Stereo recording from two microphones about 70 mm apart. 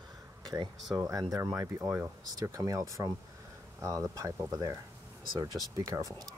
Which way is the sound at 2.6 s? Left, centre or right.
Right.